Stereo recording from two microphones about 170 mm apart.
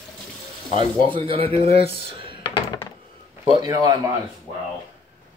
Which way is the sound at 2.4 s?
30° left (ahead or behind).